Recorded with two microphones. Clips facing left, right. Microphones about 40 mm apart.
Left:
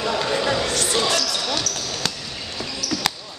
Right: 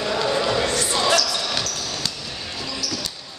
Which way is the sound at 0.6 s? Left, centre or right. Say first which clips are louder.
Even; centre.